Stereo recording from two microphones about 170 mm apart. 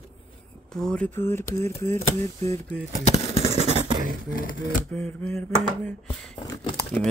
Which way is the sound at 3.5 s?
40° right (ahead or behind).